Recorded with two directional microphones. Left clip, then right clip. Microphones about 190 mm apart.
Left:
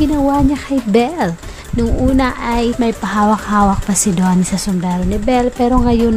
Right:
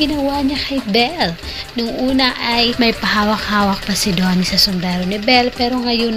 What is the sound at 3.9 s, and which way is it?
Speech, 40° left (ahead or behind).